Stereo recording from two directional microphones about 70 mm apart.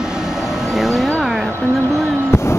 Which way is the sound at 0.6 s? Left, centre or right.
Centre.